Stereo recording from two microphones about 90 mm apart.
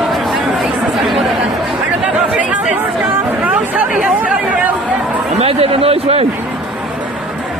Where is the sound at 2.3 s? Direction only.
15° right (ahead or behind).